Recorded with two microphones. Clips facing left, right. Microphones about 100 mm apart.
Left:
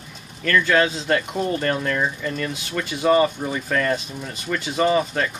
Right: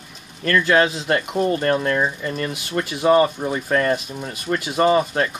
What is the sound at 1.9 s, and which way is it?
Speech, 25° right (ahead or behind).